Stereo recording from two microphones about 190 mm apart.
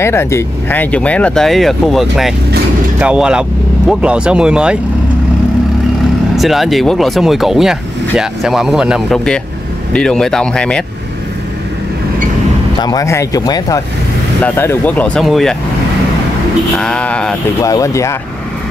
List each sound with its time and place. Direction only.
0.0 s speech: 15° left (ahead or behind); by 4.7 s 5° right (ahead or behind)
6.3 s speech: centre (ahead or behind)
12.7 s speech: 20° left (ahead or behind); by 15.5 s centre (ahead or behind)
16.7 s speech: 5° left (ahead or behind)
17.6 s speech: 15° left (ahead or behind)